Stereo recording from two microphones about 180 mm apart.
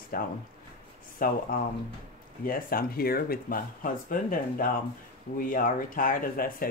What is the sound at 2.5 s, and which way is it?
Speech, 55° left (ahead or behind).